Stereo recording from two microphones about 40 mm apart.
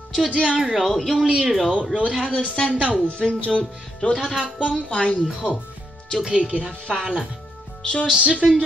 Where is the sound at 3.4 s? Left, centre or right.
Left.